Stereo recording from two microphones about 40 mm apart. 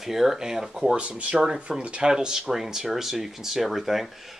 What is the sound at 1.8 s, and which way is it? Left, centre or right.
Speech, right.